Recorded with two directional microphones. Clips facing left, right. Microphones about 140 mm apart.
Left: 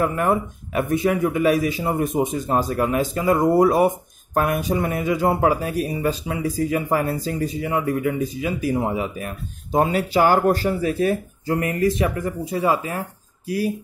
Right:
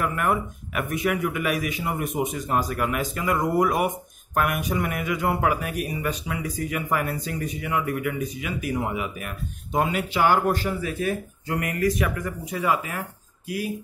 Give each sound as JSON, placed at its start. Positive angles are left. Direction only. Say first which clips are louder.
{"t": 0.0, "sound": "a man's voice", "louder": "left 4 dB", "side_deg": 30}